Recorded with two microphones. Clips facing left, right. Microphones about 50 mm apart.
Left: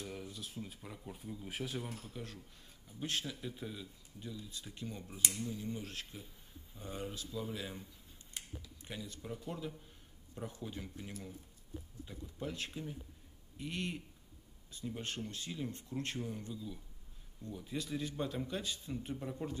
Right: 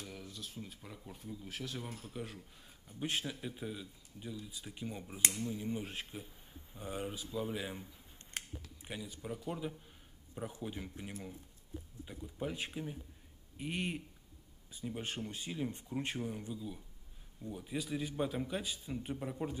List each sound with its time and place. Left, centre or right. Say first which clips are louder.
0.0 s speech: left 2 dB; centre
1.3 s speech: left 2 dB; centre
1.8 s speech: left 1 dB; centre
2.0 s speech: right 3 dB; centre
8.2 s a sound: right 4 dB; right
8.8 s speech: right 2 dB; centre